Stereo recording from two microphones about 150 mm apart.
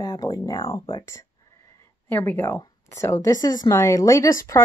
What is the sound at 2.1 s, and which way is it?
A woman's voice, 10° left (ahead or behind).